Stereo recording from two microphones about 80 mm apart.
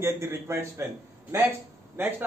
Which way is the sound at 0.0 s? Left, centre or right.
Right.